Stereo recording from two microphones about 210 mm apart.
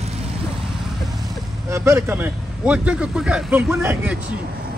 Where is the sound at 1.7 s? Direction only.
15° right (ahead or behind).